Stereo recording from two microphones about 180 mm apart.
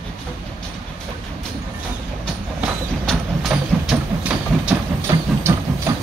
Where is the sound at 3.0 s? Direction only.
Centre (ahead or behind).